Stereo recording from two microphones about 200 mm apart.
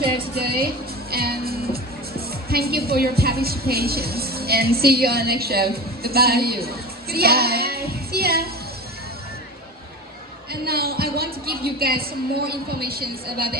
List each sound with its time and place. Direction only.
0.3 s speech: 50° right (ahead or behind)
10.5 s a woman's voice: 50° right (ahead or behind)